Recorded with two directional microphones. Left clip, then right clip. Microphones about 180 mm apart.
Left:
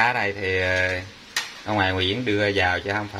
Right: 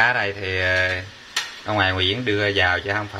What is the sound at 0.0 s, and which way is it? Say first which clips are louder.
Speech: right 2 dB; centre (ahead or behind).